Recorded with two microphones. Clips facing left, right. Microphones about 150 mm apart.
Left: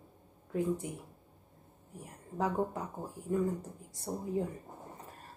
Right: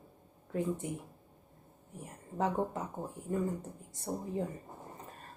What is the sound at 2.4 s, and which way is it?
Speech, centre (ahead or behind).